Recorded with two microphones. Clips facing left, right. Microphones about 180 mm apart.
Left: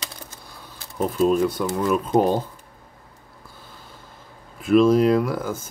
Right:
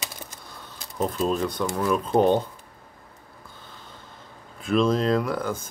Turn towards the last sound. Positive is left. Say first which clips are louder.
# left 4 dB
turn(degrees=5)  # may be behind; listen again after turning